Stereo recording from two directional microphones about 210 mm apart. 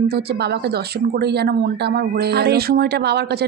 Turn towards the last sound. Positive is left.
turn(degrees=-50)  # may be behind; listen again after turning